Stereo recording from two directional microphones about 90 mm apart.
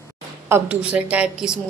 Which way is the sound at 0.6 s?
15° right (ahead or behind).